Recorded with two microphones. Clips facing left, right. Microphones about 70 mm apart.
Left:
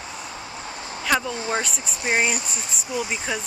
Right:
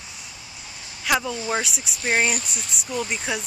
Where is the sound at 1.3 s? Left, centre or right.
Left.